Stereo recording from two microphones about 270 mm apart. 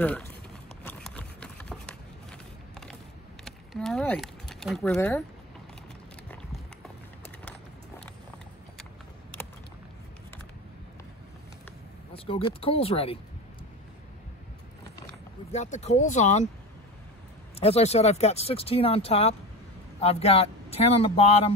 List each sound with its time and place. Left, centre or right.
0.8 s a sound: centre
3.4 s speech: centre
12.1 s speech: centre
15.5 s speech: left
17.6 s speech: left